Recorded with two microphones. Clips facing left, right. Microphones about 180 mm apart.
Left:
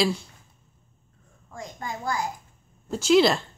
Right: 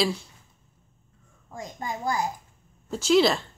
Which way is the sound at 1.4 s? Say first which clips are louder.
Right 1 dB; 20° right (ahead or behind).